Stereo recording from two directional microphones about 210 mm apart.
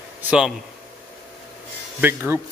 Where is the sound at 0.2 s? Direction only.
5° right (ahead or behind).